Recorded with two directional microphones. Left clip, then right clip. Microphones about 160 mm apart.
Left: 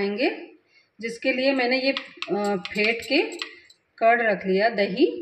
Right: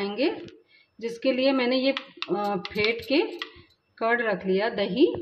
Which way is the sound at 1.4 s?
45° right (ahead or behind).